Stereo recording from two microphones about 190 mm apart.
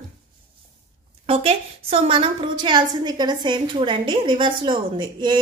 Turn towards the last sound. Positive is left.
turn(degrees=-25)  # may be behind; listen again after turning